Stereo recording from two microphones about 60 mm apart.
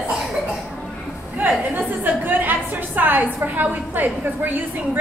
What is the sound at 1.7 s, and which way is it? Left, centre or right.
A woman's voice, right.